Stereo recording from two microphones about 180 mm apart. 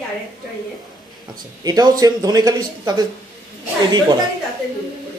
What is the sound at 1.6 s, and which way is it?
Speech, 20° right (ahead or behind).